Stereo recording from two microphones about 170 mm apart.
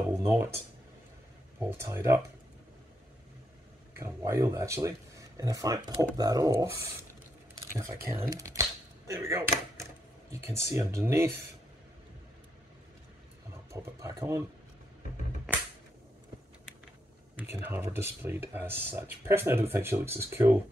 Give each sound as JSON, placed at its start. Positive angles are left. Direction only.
{"t": 0.1, "sound": "speech", "side_deg": -15}
{"t": 1.6, "sound": "speech", "side_deg": -15}
{"t": 4.0, "sound": "speech", "side_deg": -15}
{"t": 7.7, "sound": "speech", "side_deg": -15}
{"t": 13.7, "sound": "speech", "side_deg": -15}
{"t": 17.4, "sound": "speech", "side_deg": -15}